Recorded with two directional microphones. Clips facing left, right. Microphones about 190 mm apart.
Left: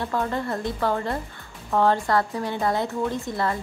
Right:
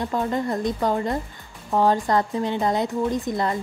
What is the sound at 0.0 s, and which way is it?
A woman's voice, 15° right (ahead or behind).